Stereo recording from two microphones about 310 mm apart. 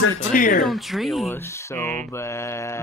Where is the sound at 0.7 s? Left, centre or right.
Centre.